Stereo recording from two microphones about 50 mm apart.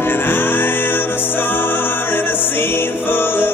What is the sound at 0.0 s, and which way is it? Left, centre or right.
Music, left.